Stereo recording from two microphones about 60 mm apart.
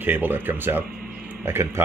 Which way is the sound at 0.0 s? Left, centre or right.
Right.